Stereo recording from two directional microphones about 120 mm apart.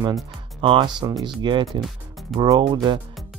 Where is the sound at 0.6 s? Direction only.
40° right (ahead or behind).